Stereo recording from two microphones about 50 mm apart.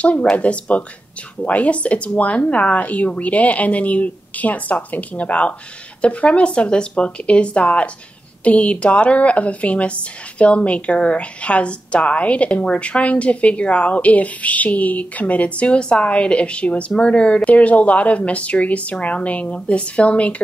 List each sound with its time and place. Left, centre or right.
0.0 s a woman's voice: left